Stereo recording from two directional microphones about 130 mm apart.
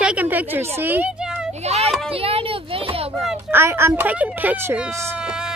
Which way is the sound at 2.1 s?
45° right (ahead or behind).